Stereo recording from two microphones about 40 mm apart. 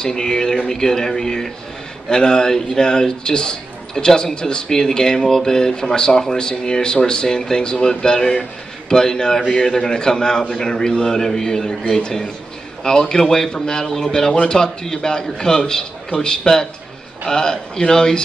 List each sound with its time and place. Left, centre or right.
0.0 s a man's voice: centre
14.3 s a man's voice: left